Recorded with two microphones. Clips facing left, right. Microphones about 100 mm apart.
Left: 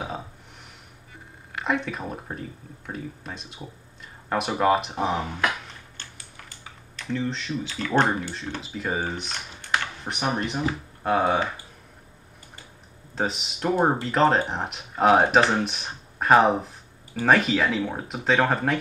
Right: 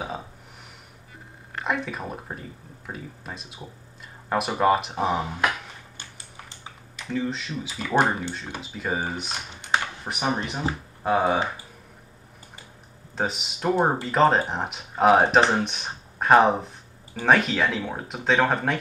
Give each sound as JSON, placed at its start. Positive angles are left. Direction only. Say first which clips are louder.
{"t": 1.6, "sound": "speech", "louder": "left 1 dB", "side_deg": 0}
{"t": 5.9, "sound": "typing", "louder": "right 1 dB", "side_deg": -15}
{"t": 7.1, "sound": "speech", "louder": "even", "side_deg": -5}
{"t": 9.6, "sound": "typing", "louder": "right 2 dB", "side_deg": -15}
{"t": 10.0, "sound": "speech", "louder": "even", "side_deg": -5}
{"t": 13.1, "sound": "speech", "louder": "even", "side_deg": 0}